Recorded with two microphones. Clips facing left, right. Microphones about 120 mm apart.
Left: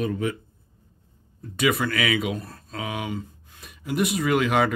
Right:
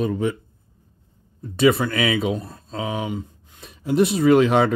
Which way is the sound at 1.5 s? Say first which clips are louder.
Right 6 dB; 30° right (ahead or behind).